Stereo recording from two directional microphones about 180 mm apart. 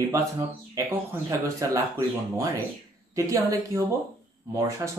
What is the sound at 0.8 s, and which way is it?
Speech, 20° right (ahead or behind).